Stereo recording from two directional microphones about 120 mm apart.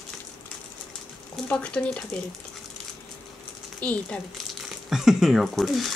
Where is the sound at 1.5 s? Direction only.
10° left (ahead or behind).